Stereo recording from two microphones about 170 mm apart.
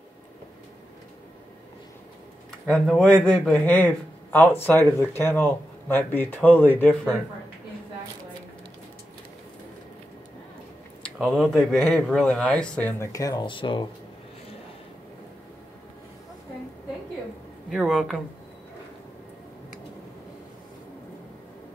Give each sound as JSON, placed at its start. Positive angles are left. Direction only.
{"t": 2.6, "sound": "speech", "side_deg": 5}
{"t": 11.1, "sound": "speech", "side_deg": -5}
{"t": 13.0, "sound": "speech", "side_deg": 20}
{"t": 17.6, "sound": "speech", "side_deg": 0}